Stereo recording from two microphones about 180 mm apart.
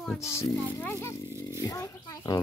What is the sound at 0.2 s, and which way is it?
Speech, 15° left (ahead or behind).